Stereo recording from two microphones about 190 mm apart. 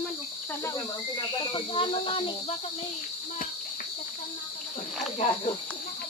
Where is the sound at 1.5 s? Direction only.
25° left (ahead or behind).